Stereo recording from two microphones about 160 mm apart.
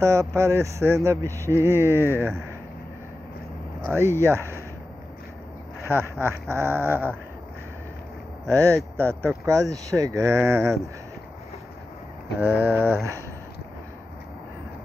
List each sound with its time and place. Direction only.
0.0 s mantra: 20° right (ahead or behind)
3.9 s mantra: 15° right (ahead or behind)
5.9 s mantra: 15° right (ahead or behind)
8.5 s speech: 20° right (ahead or behind)
12.4 s mantra: 15° right (ahead or behind)